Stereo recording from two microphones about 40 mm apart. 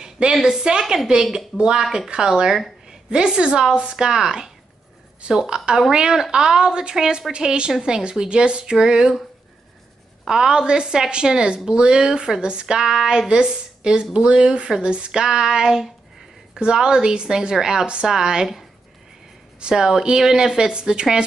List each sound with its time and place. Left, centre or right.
0.0 s a woman's voice: centre
10.2 s a woman's voice: centre